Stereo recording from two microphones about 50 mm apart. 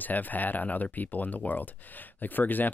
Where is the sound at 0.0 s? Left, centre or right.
Left.